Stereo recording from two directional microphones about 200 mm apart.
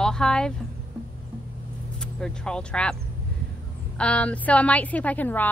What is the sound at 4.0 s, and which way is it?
A woman's voice, 5° left (ahead or behind).